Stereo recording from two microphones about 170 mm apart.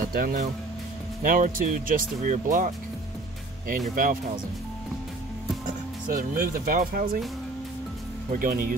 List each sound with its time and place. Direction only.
0.1 s speech: 55° right (ahead or behind)
3.9 s speech: 55° right (ahead or behind)
6.0 s speech: 55° right (ahead or behind)
8.3 s speech: 55° right (ahead or behind)